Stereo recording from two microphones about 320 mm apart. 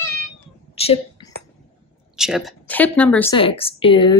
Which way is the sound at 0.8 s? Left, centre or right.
Centre.